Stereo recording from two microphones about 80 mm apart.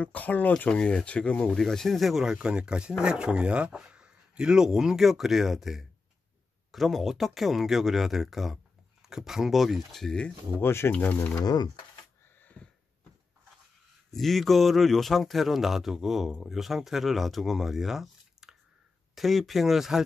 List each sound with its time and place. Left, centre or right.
0.0 s speech: centre
2.3 s a man's voice: centre
10.6 s speech: left
11.4 s speech: left
14.1 s a man's voice: centre